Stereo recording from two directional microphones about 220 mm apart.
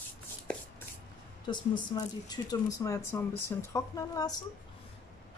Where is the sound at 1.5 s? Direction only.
20° left (ahead or behind).